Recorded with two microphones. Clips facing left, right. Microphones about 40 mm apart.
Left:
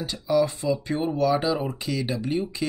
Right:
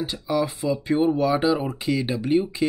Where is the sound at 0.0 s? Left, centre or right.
Centre.